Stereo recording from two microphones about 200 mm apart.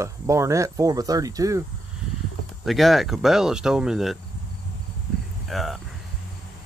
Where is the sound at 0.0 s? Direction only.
15° right (ahead or behind).